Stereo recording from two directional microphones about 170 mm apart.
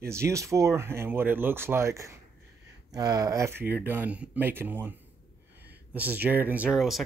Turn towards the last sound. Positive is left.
turn(degrees=0)  # may be behind; listen again after turning